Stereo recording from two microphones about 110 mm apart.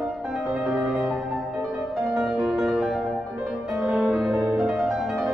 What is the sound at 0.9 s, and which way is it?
Music, centre (ahead or behind).